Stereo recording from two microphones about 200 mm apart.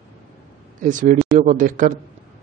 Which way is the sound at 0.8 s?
40° right (ahead or behind).